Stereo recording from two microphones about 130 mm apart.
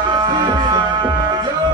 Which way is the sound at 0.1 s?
35° right (ahead or behind).